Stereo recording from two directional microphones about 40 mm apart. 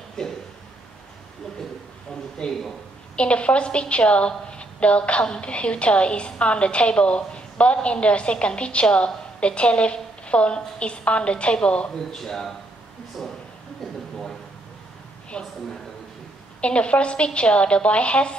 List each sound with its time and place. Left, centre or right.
0.2 s a sound: centre
2.4 s a woman's voice: left
12.1 s a man's voice: centre
15.3 s a woman's voice: left
16.6 s a woman's voice: left